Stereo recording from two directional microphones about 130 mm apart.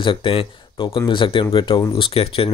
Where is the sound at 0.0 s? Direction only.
40° left (ahead or behind).